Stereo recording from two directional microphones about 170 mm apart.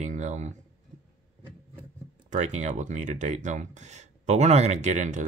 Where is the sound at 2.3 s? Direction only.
45° right (ahead or behind).